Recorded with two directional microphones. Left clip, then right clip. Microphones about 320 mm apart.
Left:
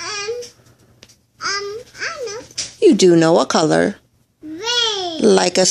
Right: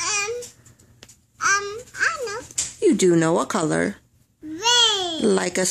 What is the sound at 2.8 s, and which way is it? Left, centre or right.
Speech, centre.